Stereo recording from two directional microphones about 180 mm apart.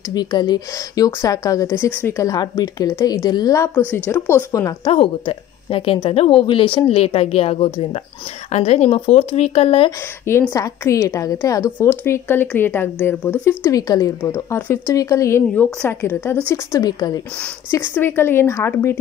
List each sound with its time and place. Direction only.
0.1 s a woman's voice: 25° left (ahead or behind)
4.9 s speech: 30° left (ahead or behind)
9.8 s a woman's voice: 15° left (ahead or behind)